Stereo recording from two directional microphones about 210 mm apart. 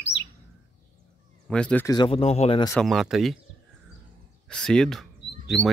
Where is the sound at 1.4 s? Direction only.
5° left (ahead or behind).